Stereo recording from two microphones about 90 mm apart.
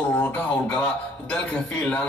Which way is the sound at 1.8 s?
10° left (ahead or behind).